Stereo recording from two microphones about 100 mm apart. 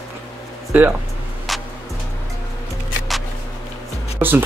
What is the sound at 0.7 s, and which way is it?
Speech, 20° right (ahead or behind).